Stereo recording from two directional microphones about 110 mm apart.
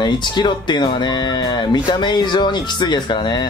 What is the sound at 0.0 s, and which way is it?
Speech, 45° left (ahead or behind).